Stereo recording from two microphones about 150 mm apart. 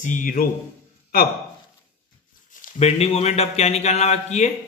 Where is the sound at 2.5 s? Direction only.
55° left (ahead or behind).